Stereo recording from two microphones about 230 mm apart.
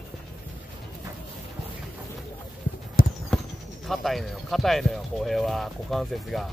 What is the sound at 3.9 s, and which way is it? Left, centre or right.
Speech, centre.